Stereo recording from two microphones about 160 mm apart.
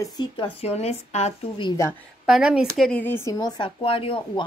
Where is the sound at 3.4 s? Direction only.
30° left (ahead or behind).